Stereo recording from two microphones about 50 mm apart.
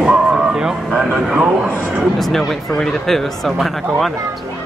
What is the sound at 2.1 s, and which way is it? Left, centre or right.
Speech, centre.